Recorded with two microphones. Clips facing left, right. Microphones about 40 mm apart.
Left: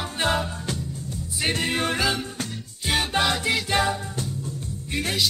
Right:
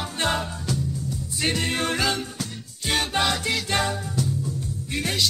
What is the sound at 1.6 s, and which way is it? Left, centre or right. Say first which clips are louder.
Music: left 2 dB; centre.